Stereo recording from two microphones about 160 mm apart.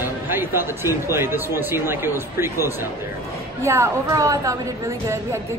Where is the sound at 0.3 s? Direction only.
15° right (ahead or behind).